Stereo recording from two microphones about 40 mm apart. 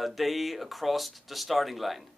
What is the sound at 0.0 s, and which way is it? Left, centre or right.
Speech, centre.